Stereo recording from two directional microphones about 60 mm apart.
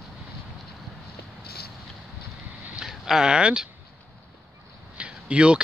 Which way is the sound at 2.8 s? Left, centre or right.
Centre.